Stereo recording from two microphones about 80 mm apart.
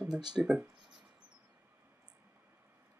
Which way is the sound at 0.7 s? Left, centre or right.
Right.